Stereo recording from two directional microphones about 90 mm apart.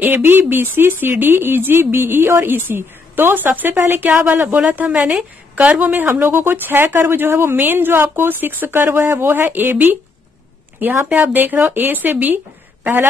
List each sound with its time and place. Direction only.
0.0 s speech: 25° right (ahead or behind)